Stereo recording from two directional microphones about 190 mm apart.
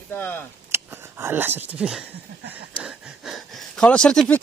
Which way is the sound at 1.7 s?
5° right (ahead or behind).